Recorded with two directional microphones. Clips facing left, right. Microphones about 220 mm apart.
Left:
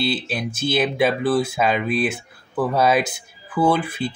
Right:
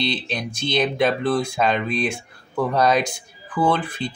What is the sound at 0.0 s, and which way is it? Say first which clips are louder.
Speech: left 2 dB; 5° left (ahead or behind).